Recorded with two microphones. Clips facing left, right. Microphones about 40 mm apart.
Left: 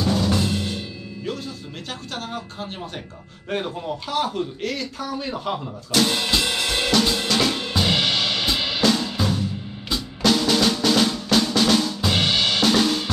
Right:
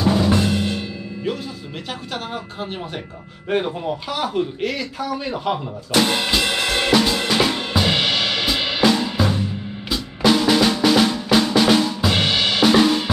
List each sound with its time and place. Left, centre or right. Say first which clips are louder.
0.0 s drum: right 4 dB; centre
3.4 s speech: right 5 dB; centre
6.3 s drum kit: right 3 dB; right
9.8 s music: right 3 dB; centre
10.3 s drum: right 3 dB; centre